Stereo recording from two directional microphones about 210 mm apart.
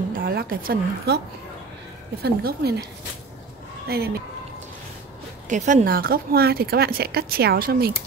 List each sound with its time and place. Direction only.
0.1 s a woman's voice: 45° right (ahead or behind)
2.2 s speech: 50° right (ahead or behind)
3.9 s speech: 45° right (ahead or behind)
5.5 s speech: 40° right (ahead or behind)